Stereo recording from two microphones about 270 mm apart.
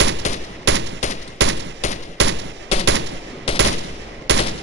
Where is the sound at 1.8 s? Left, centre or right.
Left.